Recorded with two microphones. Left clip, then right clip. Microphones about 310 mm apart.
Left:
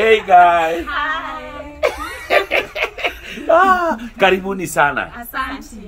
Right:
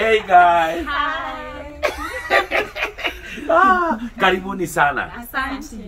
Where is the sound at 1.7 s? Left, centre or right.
Left.